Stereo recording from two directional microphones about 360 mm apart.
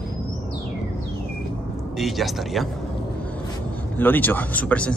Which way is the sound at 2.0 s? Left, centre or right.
Centre.